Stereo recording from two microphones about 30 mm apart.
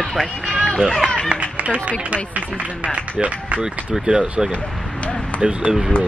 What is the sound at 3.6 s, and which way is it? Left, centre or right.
Speech, right.